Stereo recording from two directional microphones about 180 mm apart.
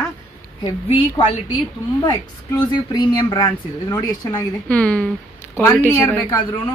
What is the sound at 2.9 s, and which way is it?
Speech, 20° left (ahead or behind).